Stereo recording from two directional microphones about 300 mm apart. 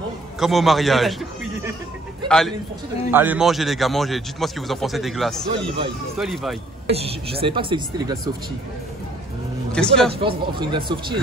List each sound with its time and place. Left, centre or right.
0.4 s a man's voice: centre
2.2 s a man's voice: centre
6.9 s speech: centre
9.7 s speech: centre
10.1 s speech: centre